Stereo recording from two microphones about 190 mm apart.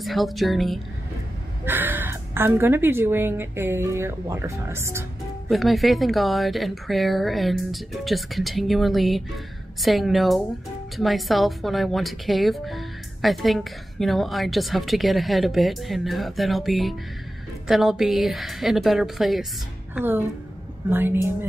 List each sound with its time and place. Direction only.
0.0 s speech: centre (ahead or behind)
1.7 s a woman's voice: 10° right (ahead or behind)
5.5 s a woman's voice: centre (ahead or behind)